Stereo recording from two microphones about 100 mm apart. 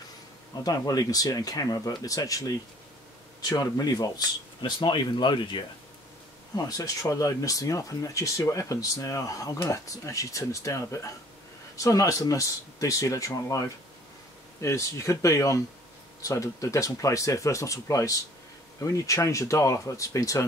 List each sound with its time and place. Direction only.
0.7 s speech: 40° left (ahead or behind)
6.5 s speech: 35° left (ahead or behind)